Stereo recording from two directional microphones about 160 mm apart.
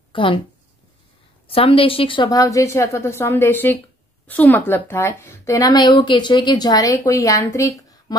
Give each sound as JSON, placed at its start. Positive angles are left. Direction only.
{"t": 0.1, "sound": "a woman's voice", "side_deg": 30}
{"t": 1.5, "sound": "speech", "side_deg": 35}